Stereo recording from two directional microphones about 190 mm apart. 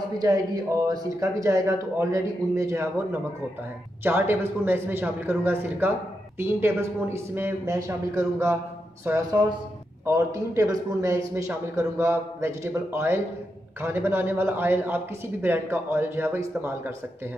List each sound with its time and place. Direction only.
0.8 s a man's voice: 15° right (ahead or behind)